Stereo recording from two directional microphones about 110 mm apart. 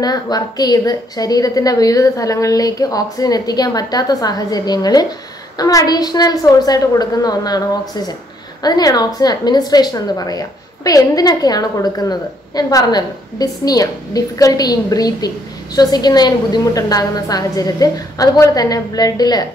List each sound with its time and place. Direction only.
0.0 s a woman's voice: 35° left (ahead or behind)